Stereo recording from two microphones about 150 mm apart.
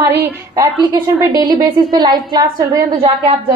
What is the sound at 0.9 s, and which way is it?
A woman's voice, 30° right (ahead or behind).